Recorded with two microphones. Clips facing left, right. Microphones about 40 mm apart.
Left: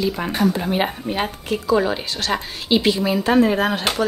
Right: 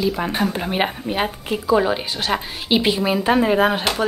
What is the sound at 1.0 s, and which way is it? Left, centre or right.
A woman's voice, centre.